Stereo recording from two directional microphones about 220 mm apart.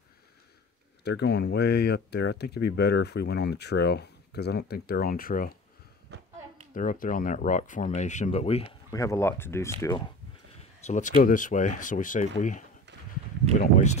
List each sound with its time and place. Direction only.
1.0 s speech: 50° left (ahead or behind)
6.1 s hands: 50° right (ahead or behind)
6.7 s speech: 35° left (ahead or behind)
8.9 s speech: 15° left (ahead or behind)
11.1 s speech: 40° left (ahead or behind)